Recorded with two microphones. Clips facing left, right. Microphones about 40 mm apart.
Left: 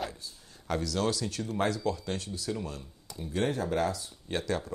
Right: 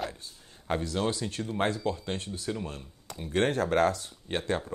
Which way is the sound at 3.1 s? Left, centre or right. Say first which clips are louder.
Right 3 dB; right.